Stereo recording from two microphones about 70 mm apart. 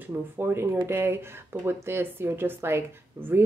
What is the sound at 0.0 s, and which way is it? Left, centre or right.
A woman's voice, right.